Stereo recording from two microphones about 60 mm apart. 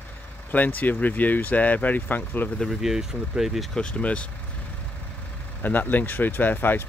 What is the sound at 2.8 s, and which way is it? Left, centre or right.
Speech, centre.